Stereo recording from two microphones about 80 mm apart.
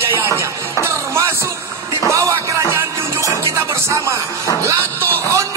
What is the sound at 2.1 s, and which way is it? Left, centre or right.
Music, right.